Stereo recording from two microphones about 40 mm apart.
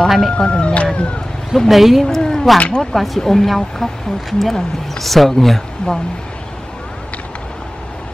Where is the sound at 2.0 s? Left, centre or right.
Centre.